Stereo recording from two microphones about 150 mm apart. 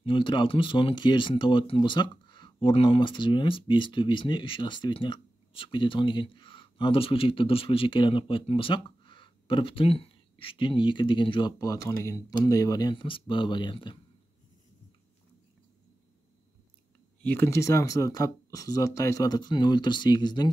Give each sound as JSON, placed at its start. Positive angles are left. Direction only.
{"t": 0.0, "sound": "speech", "side_deg": 35}
{"t": 17.2, "sound": "speech", "side_deg": 15}